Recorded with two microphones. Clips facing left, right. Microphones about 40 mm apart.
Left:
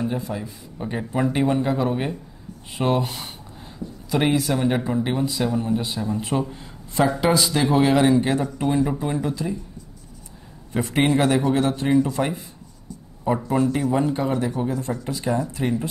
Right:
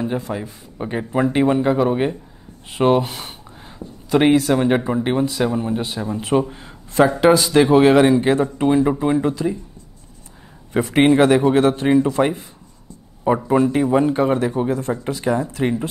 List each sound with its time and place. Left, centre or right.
0.4 s a man's voice: right
4.6 s a man's voice: right
6.3 s a man's voice: centre
7.0 s a man's voice: right
8.4 s speech: right
8.6 s a man's voice: right
10.7 s a man's voice: right